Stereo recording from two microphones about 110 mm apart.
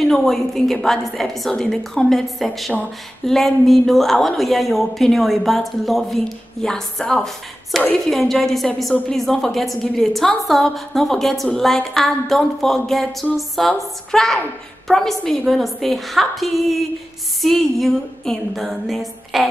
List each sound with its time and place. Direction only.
0.0 s a woman's voice: centre (ahead or behind)